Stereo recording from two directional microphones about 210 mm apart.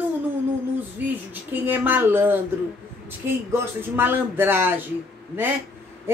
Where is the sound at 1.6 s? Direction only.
10° right (ahead or behind).